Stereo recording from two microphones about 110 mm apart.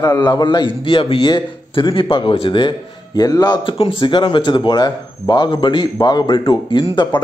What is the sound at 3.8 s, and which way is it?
A man's voice, 55° left (ahead or behind).